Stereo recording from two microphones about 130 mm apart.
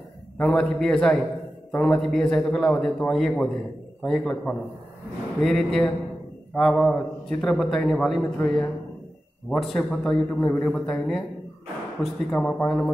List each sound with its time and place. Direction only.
0.4 s a man's voice: 5° left (ahead or behind)